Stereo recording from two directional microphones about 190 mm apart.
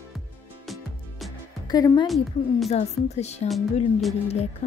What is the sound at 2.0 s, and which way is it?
Speech, centre (ahead or behind).